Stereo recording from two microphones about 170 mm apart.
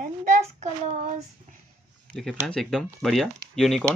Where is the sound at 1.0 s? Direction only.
50° right (ahead or behind).